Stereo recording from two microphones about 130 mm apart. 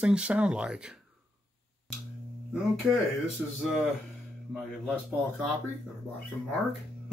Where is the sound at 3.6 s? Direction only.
Centre (ahead or behind).